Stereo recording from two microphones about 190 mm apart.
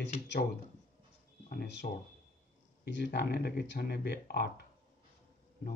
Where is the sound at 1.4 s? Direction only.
60° left (ahead or behind).